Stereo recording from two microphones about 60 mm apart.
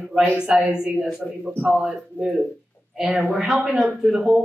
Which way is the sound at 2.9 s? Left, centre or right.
Centre.